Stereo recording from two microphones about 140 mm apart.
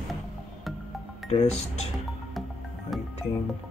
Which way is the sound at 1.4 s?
50° left (ahead or behind).